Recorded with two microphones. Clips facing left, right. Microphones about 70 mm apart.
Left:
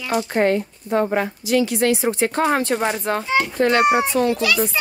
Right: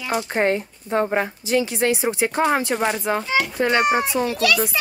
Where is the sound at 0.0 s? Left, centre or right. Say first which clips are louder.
Left 2 dB; right; by 3.1 s centre.